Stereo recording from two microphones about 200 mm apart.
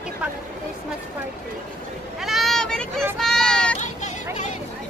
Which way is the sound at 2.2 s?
Centre (ahead or behind).